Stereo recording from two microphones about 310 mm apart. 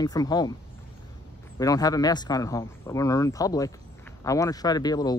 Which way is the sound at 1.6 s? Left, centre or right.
Centre.